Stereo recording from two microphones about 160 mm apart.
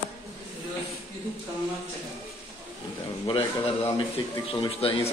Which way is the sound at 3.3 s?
30° left (ahead or behind).